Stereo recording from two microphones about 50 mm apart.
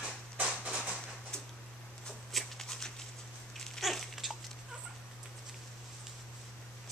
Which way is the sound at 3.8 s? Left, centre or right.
Centre.